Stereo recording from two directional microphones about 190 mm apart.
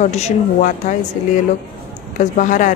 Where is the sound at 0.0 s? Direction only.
40° left (ahead or behind).